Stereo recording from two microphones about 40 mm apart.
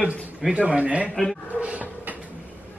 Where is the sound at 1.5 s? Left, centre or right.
Right.